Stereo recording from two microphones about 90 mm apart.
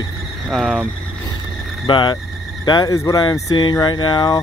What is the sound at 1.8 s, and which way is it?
Speech, 60° left (ahead or behind).